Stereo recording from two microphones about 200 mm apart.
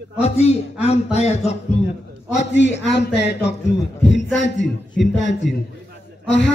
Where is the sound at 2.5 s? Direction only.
60° left (ahead or behind).